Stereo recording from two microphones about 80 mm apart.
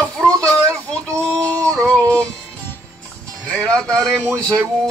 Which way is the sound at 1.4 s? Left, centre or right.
Right.